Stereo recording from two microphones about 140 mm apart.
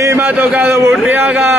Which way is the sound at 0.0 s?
20° right (ahead or behind).